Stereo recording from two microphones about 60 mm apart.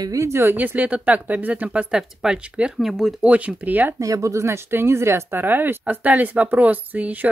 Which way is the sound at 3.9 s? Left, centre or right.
Right.